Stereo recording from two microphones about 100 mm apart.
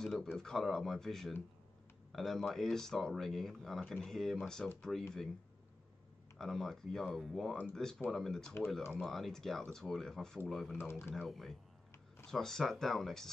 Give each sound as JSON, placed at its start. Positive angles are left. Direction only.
{"t": 0.0, "sound": "speech", "side_deg": 5}
{"t": 6.3, "sound": "speech", "side_deg": 0}
{"t": 10.9, "sound": "speech", "side_deg": 20}
{"t": 11.2, "sound": "speech", "side_deg": 0}